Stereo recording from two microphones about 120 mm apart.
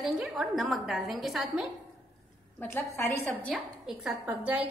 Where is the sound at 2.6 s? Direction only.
20° left (ahead or behind).